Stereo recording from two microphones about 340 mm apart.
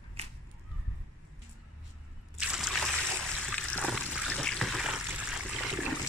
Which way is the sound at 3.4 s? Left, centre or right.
Centre.